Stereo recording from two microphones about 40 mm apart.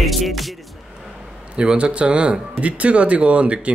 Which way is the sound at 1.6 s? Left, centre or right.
Right.